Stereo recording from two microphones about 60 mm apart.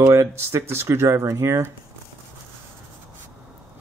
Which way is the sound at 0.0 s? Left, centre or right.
Right.